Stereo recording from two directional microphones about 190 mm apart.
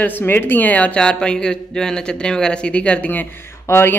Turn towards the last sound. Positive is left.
turn(degrees=10)  # may be behind; listen again after turning